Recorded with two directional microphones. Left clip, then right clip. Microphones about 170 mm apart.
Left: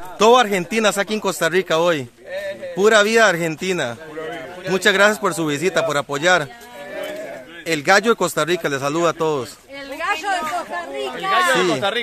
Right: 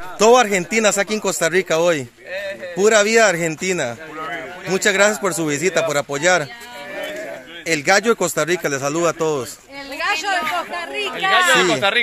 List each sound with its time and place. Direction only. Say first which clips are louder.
0.2 s speech: right 1 dB; 5° right (ahead or behind)
7.6 s speech: even; 5° right (ahead or behind)
11.1 s speech: right 3 dB; 30° right (ahead or behind)
11.6 s speech: right 2 dB; 5° right (ahead or behind)